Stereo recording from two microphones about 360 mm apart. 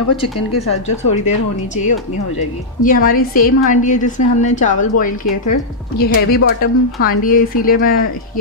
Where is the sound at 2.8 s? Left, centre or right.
Left.